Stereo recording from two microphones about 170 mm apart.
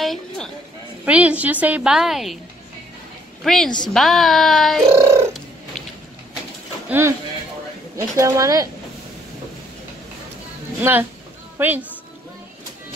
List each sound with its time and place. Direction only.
0.0 s a sound: centre (ahead or behind)
1.0 s a woman's voice: 10° right (ahead or behind)
3.4 s speech: 5° left (ahead or behind)
4.8 s a sound: 15° right (ahead or behind)
6.9 s speech: 15° right (ahead or behind)
8.2 s speech: 20° right (ahead or behind)
10.8 s a woman's voice: 10° right (ahead or behind)